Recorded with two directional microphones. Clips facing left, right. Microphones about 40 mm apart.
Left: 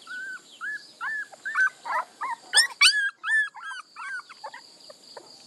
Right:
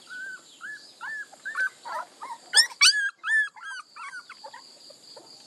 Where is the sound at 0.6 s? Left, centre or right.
Left.